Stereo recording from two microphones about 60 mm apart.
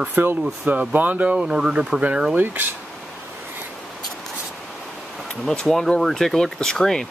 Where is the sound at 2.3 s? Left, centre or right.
Right.